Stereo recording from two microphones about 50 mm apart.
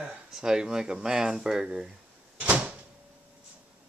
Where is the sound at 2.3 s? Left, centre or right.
Right.